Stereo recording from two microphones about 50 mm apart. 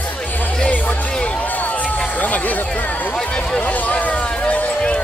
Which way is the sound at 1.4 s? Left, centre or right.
Left.